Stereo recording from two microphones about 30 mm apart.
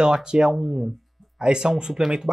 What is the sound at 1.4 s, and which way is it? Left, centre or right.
Speech, right.